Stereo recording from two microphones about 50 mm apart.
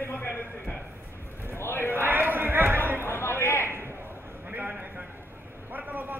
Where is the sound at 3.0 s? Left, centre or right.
Left.